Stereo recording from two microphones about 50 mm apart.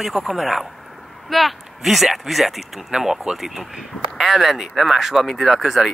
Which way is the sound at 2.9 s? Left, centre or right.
Centre.